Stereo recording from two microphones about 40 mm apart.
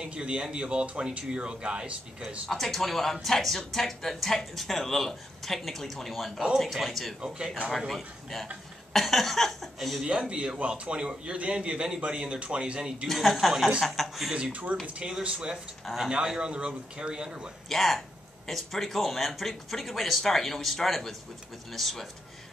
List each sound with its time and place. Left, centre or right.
0.0 s speech: right
2.4 s speech: centre
7.2 s speech: right
7.7 s speech: centre
10.0 s speech: right
13.1 s speech: centre
14.3 s speech: right
15.8 s speech: centre
16.3 s speech: right
17.6 s speech: centre